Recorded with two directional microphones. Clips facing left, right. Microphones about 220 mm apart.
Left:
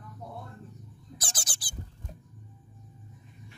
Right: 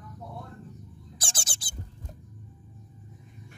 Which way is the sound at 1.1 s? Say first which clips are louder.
Even; 30° right (ahead or behind).